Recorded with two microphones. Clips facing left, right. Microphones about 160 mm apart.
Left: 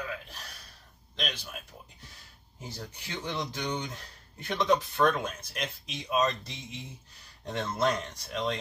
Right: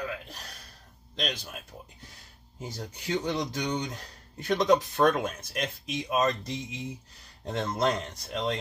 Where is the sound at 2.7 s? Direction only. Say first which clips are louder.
Right 9 dB; 45° right (ahead or behind).